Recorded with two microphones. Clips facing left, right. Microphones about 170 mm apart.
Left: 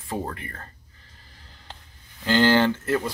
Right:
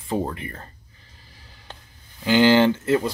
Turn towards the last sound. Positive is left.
turn(degrees=-15)  # may be behind; listen again after turning